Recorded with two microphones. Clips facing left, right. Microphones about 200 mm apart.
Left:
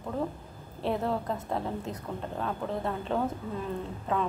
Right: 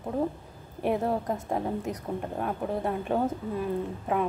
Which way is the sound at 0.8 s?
15° right (ahead or behind).